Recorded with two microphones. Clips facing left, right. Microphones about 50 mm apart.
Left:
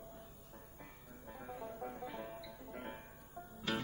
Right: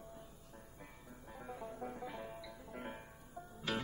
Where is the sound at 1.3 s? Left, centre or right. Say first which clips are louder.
Left 1 dB; centre.